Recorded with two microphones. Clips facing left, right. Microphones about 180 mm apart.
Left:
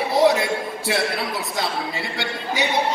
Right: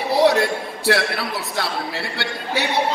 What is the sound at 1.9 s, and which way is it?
Speech, 65° right (ahead or behind).